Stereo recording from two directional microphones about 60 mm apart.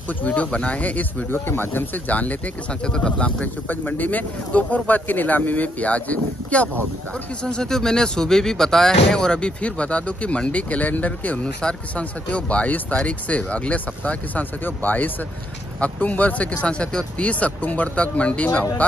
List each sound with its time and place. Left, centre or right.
0.2 s speech: left
1.3 s speech: left; by 3.4 s centre
3.6 s speech: left
7.4 s speech: centre